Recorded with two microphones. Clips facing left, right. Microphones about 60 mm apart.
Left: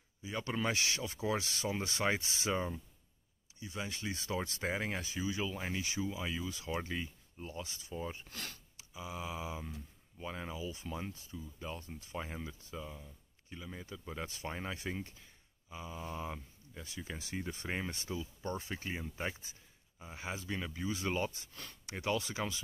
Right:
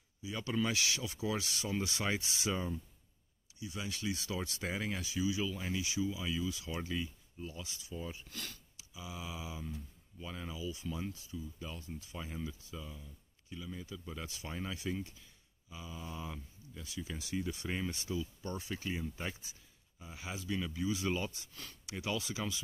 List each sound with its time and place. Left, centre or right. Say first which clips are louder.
0.2 s speech: right 1 dB; left